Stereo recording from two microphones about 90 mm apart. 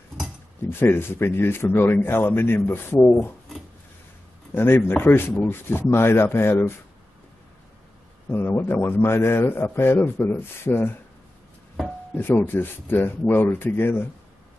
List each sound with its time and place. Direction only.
0.7 s speech: 25° left (ahead or behind)
4.6 s speech: 25° left (ahead or behind)
8.3 s speech: 25° left (ahead or behind)
12.2 s speech: 25° left (ahead or behind)